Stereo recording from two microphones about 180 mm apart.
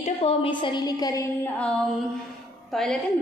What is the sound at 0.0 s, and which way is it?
A woman's voice, 35° left (ahead or behind).